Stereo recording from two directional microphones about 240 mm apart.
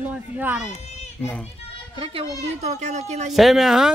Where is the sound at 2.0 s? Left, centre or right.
Right.